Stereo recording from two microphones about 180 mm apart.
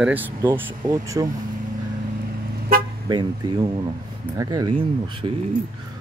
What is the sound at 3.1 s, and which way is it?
Speech, 25° right (ahead or behind).